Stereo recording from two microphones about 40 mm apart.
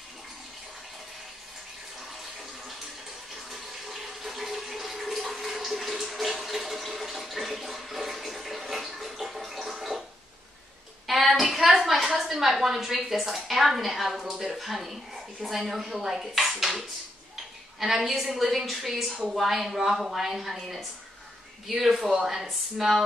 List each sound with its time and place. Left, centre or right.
3.4 s water: centre
11.1 s a woman's voice: centre
17.7 s a woman's voice: centre